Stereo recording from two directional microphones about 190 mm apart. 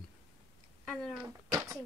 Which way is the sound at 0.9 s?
5° left (ahead or behind).